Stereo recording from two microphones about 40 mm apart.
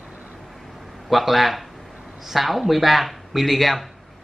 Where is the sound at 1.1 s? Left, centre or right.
Centre.